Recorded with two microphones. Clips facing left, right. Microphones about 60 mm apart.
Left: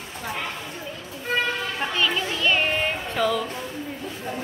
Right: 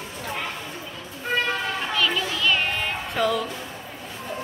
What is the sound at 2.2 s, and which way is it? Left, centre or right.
Music, left.